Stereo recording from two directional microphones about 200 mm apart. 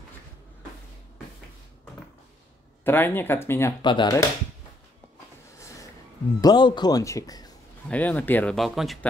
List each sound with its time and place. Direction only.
2.8 s speech: 10° left (ahead or behind)
3.8 s a man's voice: 25° left (ahead or behind)
5.6 s a sound: 15° left (ahead or behind)
6.4 s a man's voice: 20° left (ahead or behind)
7.9 s speech: 5° left (ahead or behind)